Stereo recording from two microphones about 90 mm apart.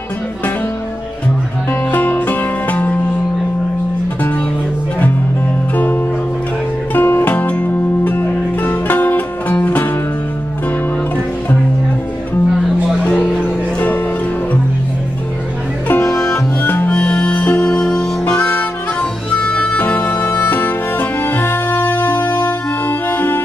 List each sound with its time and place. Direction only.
1.7 s music: 20° left (ahead or behind)
6.9 s music: 20° left (ahead or behind)
13.0 s music: 20° left (ahead or behind)
15.9 s music: 25° left (ahead or behind)
16.9 s music: 10° left (ahead or behind)
18.4 s harmonica: 20° left (ahead or behind)